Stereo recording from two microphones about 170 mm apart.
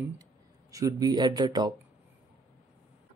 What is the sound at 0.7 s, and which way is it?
Speech, 20° right (ahead or behind).